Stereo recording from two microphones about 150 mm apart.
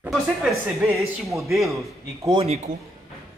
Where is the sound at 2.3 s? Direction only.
45° right (ahead or behind).